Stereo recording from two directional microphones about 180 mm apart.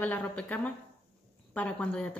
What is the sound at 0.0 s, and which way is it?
A woman's voice, 10° left (ahead or behind).